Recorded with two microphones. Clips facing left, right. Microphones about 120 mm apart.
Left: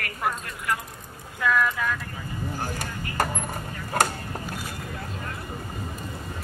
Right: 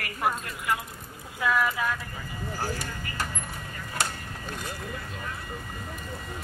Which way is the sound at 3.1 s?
55° left (ahead or behind).